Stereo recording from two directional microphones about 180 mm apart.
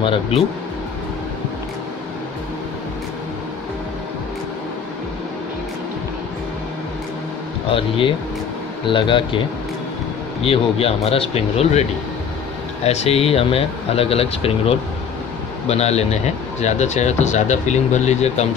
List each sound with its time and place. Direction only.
0.0 s speech: 30° left (ahead or behind)
7.7 s speech: 30° left (ahead or behind)
10.4 s speech: 30° left (ahead or behind)
12.8 s speech: 35° left (ahead or behind)